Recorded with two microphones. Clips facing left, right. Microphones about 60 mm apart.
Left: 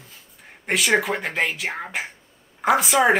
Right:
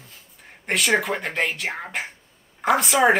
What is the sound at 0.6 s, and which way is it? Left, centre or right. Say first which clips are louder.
A woman's voice: left 1 dB; centre.